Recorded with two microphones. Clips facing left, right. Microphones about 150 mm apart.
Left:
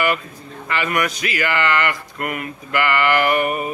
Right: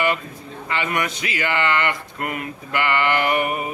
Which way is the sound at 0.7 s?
20° right (ahead or behind).